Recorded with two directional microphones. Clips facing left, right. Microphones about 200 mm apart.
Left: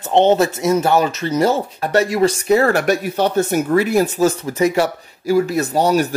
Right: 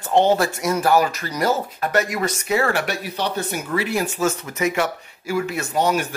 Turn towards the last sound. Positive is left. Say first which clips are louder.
# left 5 dB
turn(degrees=35)  # may be behind; listen again after turning